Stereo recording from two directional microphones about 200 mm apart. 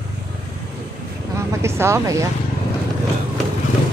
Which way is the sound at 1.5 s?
15° right (ahead or behind).